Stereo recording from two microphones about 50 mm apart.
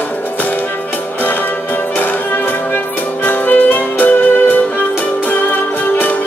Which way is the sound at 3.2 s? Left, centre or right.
Left.